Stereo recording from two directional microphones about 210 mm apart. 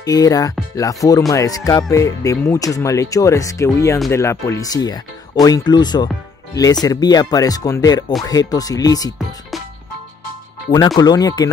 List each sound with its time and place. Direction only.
0.0 s speech: 15° left (ahead or behind)
11.0 s speech: 20° left (ahead or behind)